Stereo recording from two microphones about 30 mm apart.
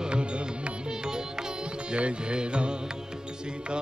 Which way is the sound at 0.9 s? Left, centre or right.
Right.